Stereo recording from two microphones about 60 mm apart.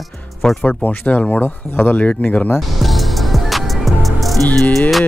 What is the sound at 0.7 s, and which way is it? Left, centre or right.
Speech, left.